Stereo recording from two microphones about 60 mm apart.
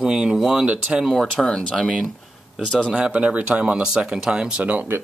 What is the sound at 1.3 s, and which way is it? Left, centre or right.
Speech, centre.